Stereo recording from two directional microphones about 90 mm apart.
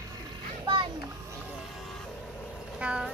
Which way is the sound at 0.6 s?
65° right (ahead or behind).